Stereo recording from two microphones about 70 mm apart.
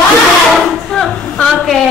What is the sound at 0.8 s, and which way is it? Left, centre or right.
Speech, centre.